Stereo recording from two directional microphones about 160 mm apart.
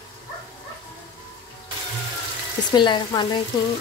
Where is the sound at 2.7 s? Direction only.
30° left (ahead or behind).